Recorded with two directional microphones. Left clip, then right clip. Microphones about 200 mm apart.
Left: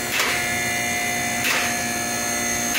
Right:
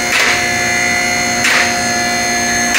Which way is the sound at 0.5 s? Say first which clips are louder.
Right 10 dB; 60° left (ahead or behind).